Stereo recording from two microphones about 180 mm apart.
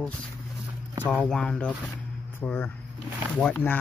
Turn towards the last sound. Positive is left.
turn(degrees=10)  # may be behind; listen again after turning